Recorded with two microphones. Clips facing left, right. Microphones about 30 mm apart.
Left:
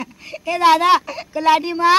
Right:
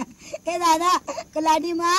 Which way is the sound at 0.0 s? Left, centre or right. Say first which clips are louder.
Left 2 dB; left.